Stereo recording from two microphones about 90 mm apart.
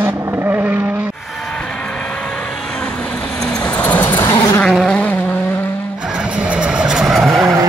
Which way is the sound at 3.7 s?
20° left (ahead or behind).